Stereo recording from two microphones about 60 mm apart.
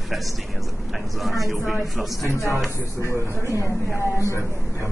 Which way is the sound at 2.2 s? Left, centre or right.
Left.